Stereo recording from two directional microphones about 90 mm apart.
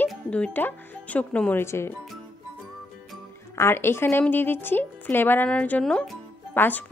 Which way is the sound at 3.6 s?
25° left (ahead or behind).